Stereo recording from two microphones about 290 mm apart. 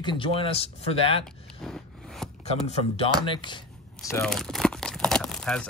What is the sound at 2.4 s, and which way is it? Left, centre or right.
Speech, left.